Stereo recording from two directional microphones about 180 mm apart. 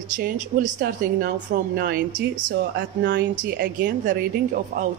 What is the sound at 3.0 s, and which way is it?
Speech, 75° right (ahead or behind).